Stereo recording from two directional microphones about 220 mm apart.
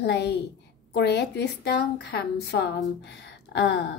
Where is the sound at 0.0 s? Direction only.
50° left (ahead or behind).